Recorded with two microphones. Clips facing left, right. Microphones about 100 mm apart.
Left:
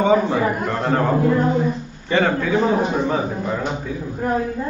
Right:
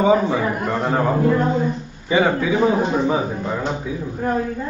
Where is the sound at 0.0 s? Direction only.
Centre (ahead or behind).